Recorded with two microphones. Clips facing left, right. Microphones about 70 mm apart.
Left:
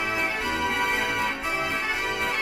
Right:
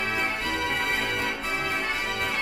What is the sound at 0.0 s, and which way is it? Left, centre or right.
Organ, centre.